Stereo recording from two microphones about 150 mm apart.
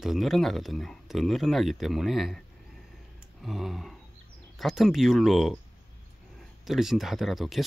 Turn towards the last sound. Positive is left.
turn(degrees=0)  # may be behind; listen again after turning